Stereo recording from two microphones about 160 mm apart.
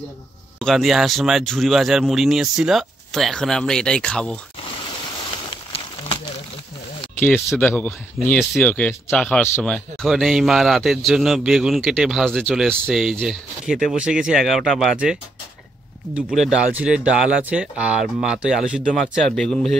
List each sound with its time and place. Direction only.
0.6 s speech: centre (ahead or behind)
5.5 s a sound: 35° left (ahead or behind)
7.2 s speech: 10° left (ahead or behind)
16.2 s speech: 5° right (ahead or behind)